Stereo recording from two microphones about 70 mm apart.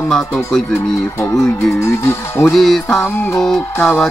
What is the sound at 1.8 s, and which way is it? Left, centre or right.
Speech, left.